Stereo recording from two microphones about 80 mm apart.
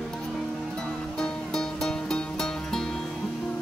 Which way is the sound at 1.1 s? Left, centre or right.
Centre.